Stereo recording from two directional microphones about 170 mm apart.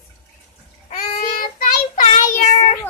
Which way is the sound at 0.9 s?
55° left (ahead or behind).